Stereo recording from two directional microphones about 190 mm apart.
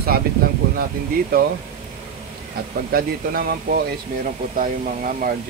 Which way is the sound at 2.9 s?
50° right (ahead or behind).